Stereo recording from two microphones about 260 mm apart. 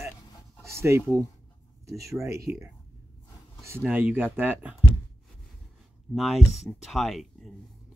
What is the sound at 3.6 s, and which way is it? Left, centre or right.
Speech, centre.